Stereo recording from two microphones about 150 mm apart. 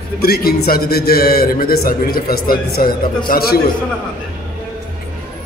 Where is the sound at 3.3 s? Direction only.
90° left.